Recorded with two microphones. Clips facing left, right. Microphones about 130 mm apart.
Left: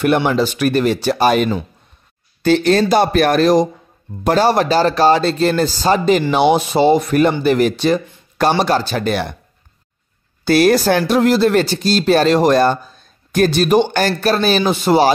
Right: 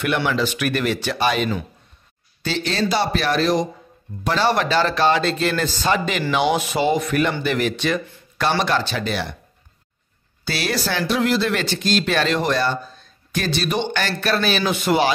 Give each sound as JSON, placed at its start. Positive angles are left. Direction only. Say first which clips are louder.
{"t": 0.0, "sound": "speech", "louder": "left 6 dB", "side_deg": 45}
{"t": 10.4, "sound": "speech", "louder": "left 12 dB", "side_deg": 50}